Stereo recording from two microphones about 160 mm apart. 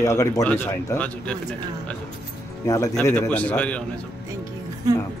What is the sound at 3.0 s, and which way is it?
Speech, 10° left (ahead or behind).